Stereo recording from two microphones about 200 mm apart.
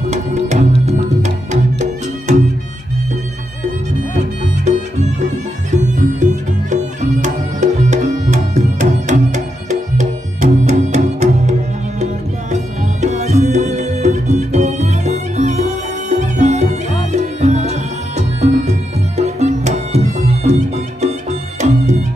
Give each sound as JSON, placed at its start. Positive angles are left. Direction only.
{"t": 0.1, "sound": "music", "side_deg": -35}
{"t": 5.8, "sound": "music", "side_deg": -35}